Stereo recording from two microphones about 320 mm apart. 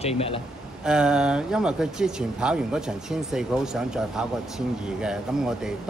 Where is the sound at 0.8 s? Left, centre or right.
Centre.